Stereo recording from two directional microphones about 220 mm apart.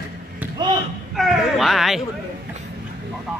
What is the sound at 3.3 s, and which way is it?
Speech, centre (ahead or behind).